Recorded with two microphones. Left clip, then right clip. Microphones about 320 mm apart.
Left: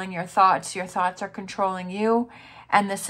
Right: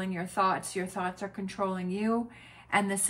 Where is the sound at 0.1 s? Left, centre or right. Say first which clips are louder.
Left 10 dB; centre.